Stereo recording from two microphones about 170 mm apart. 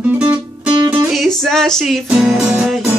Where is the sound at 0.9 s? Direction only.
Centre (ahead or behind).